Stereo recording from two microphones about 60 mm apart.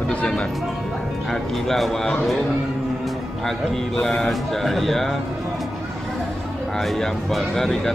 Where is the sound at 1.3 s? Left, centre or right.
Centre.